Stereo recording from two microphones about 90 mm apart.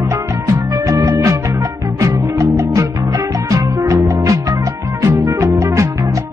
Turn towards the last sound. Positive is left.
turn(degrees=-35)  # may be behind; listen again after turning